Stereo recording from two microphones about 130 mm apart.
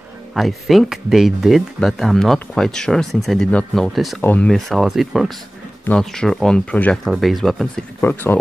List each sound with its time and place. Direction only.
0.3 s speech: centre (ahead or behind)
4.2 s speech: 15° left (ahead or behind)
4.5 s speech: centre (ahead or behind)
8.0 s speech: 15° left (ahead or behind)